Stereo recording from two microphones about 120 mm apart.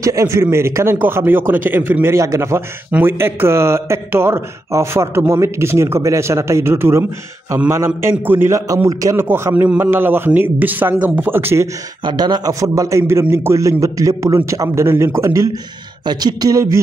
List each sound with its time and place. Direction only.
0.0 s a man's voice: 25° right (ahead or behind)
12.0 s a man's voice: 40° right (ahead or behind)
16.1 s a sound: 35° right (ahead or behind)